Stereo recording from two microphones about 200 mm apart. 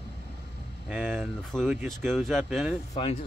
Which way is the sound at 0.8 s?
5° right (ahead or behind).